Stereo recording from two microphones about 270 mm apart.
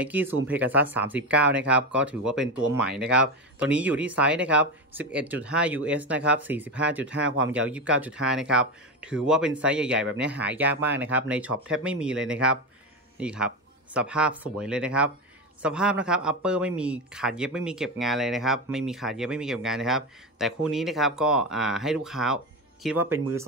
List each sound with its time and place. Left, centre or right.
0.0 s a man's voice: centre
7.2 s speech: right
7.7 s a man's voice: centre